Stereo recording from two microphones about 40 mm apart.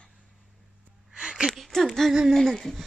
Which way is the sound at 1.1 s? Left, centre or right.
Right.